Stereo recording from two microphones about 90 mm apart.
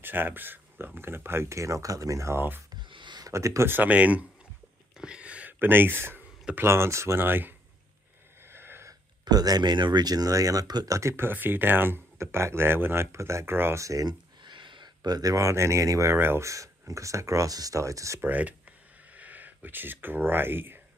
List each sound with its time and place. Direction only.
0.0 s speech: 20° right (ahead or behind)
2.9 s a sound: 60° right (ahead or behind)
3.3 s speech: 35° right (ahead or behind); by 4.3 s 15° right (ahead or behind)
4.9 s a sound: 10° right (ahead or behind)
6.5 s speech: 30° right (ahead or behind)
8.5 s a sound: 25° right (ahead or behind)
9.2 s speech: 45° right (ahead or behind)
11.0 s speech: 30° right (ahead or behind)
14.4 s speech: 60° right (ahead or behind); by 18.2 s 35° right (ahead or behind)
18.2 s speech: 15° right (ahead or behind)